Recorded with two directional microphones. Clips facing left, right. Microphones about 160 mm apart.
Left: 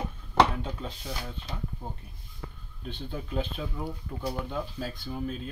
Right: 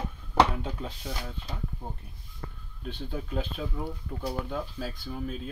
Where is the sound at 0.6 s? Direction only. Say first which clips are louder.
Even; 10° right (ahead or behind).